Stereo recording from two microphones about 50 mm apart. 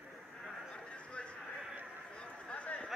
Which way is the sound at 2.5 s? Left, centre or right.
Left.